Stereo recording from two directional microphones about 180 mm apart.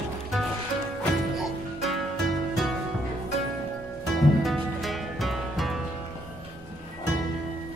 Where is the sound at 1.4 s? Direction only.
Centre (ahead or behind).